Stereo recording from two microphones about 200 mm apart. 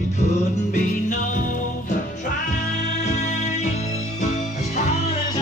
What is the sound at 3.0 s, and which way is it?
Music, 35° left (ahead or behind).